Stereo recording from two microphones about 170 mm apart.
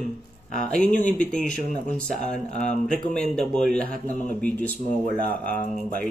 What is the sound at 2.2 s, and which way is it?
Speech, 45° left (ahead or behind).